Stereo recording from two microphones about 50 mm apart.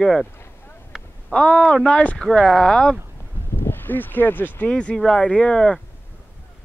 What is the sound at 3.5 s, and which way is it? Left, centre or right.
Speech, left.